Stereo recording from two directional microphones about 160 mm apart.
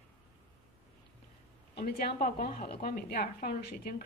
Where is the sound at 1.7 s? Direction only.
75° left (ahead or behind).